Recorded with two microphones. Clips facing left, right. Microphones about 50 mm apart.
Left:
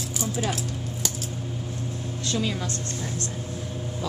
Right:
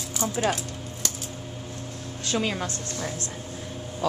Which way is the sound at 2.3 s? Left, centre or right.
Right.